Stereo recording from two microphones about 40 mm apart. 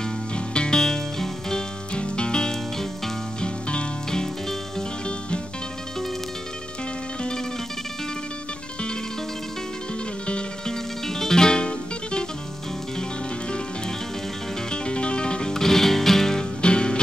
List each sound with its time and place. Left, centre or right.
0.0 s music: left
2.0 s music: left
4.1 s music: centre
10.7 s music: centre
14.7 s music: left
16.6 s music: left